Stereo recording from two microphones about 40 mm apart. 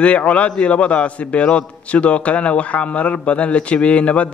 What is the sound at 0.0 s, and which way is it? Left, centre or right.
A man's voice, left.